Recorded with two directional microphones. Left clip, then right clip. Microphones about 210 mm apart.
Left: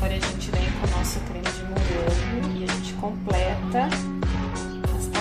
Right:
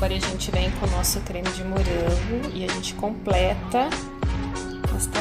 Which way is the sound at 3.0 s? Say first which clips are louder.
Right 3 dB; 40° right (ahead or behind).